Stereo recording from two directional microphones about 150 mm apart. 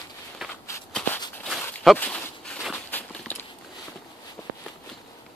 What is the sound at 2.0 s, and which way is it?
Walk, 5° left (ahead or behind).